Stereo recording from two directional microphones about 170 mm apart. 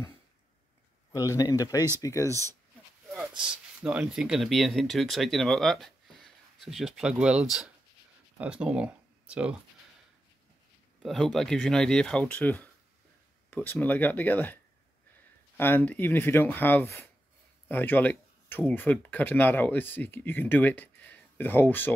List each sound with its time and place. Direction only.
1.1 s speech: 20° left (ahead or behind)
3.4 s speech: 5° right (ahead or behind)
11.0 s speech: centre (ahead or behind)